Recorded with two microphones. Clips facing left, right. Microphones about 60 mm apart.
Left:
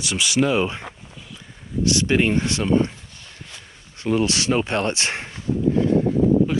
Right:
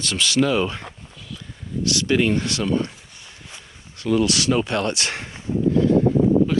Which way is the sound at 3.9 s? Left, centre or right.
Left.